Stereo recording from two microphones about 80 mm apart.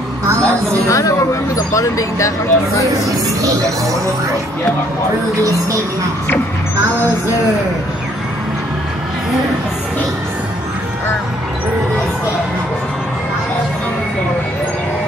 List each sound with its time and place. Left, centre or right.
0.3 s a woman's voice: right
0.8 s a woman's voice: left
3.4 s speech: right